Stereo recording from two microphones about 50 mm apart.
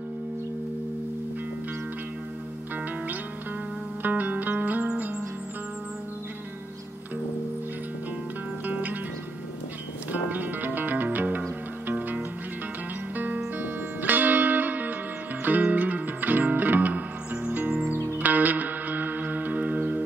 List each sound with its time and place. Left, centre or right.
4.0 s music: right
8.6 s music: right
10.3 s music: right